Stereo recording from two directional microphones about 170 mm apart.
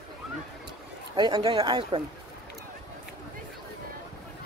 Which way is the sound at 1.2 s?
25° right (ahead or behind).